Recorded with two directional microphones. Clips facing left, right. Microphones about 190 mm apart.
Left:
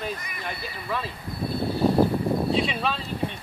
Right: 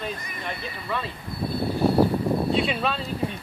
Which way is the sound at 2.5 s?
Centre (ahead or behind).